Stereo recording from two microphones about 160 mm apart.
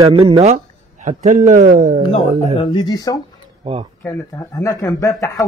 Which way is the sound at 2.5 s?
30° left (ahead or behind).